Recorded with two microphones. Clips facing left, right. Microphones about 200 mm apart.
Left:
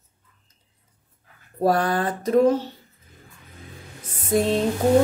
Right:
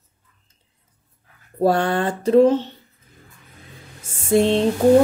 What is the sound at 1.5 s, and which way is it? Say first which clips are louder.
A woman's voice: right 2 dB; 25° right (ahead or behind).